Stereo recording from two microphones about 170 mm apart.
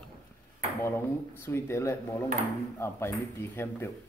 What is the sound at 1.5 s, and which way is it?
Speech, 15° left (ahead or behind).